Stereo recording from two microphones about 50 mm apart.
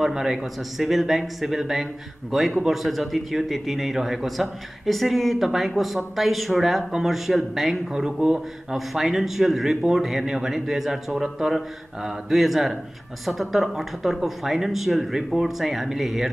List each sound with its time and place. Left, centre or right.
0.0 s speech: centre
7.9 s speech: centre
8.7 s speech: centre